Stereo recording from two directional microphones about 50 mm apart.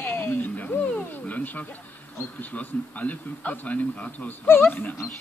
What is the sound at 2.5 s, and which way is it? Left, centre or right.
Speech, left.